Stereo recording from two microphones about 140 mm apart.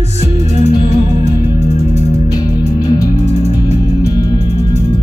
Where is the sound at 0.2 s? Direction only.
50° left (ahead or behind).